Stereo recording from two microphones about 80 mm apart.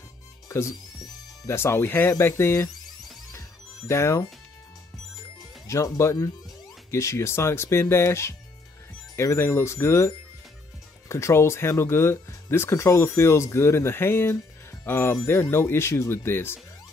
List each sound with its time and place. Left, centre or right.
0.5 s speech: left
3.3 s music: left
5.4 s music: left
6.9 s speech: left